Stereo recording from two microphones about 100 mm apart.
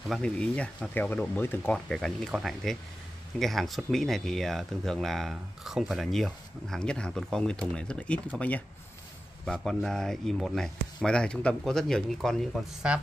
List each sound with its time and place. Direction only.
0.1 s speech: 10° left (ahead or behind)
1.7 s speech: 5° left (ahead or behind)
9.5 s speech: 5° left (ahead or behind)
12.9 s speech: 10° right (ahead or behind)